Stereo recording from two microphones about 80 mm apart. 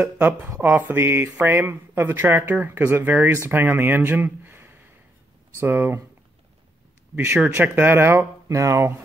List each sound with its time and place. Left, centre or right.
0.0 s speech: right
7.3 s speech: right
8.5 s speech: right